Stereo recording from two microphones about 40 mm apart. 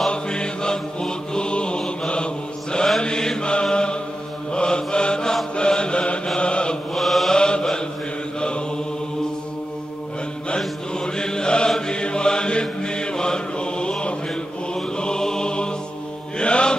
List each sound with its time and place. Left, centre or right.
0.1 s mantra: left
3.7 s chant: left
4.5 s mantra: left
6.9 s chant: centre
7.3 s mantra: left
11.1 s mantra: centre